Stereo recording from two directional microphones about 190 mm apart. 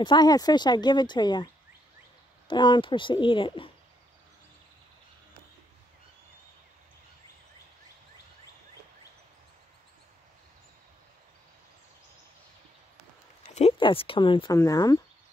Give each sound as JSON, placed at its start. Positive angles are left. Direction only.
{"t": 0.0, "sound": "speech", "side_deg": 20}
{"t": 13.4, "sound": "a sound", "side_deg": 35}
{"t": 14.6, "sound": "speech", "side_deg": 20}